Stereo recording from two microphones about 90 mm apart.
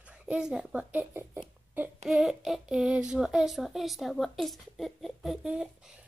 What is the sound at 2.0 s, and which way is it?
Child singing, 5° right (ahead or behind).